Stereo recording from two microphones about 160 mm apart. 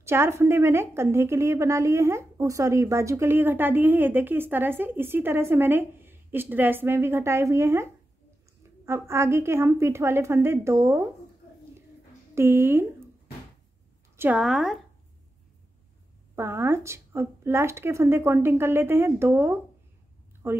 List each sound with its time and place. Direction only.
0.0 s a woman's voice: 15° right (ahead or behind)
12.4 s speech: 15° right (ahead or behind)
14.1 s a woman's voice: 15° right (ahead or behind)
14.4 s speech: centre (ahead or behind)
16.3 s a woman's voice: 15° right (ahead or behind)